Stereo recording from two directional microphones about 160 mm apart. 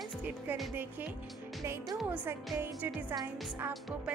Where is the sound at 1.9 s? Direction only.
10° right (ahead or behind).